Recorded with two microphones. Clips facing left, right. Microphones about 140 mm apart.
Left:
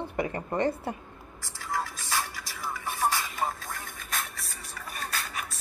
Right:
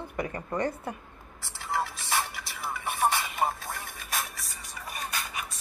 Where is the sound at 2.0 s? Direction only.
15° right (ahead or behind).